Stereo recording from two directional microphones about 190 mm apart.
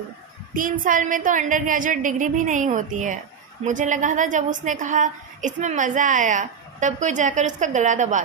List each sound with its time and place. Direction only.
0.6 s a woman's voice: 45° right (ahead or behind)